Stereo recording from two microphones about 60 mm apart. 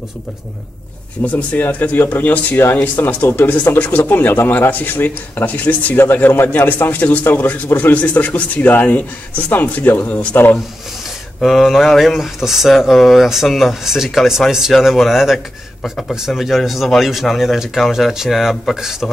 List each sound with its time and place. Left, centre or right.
1.2 s a man's voice: left
11.4 s speech: centre